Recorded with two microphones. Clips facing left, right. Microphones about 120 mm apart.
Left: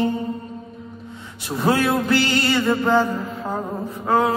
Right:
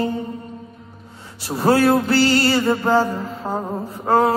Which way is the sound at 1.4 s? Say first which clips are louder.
Right 4 dB; 35° right (ahead or behind).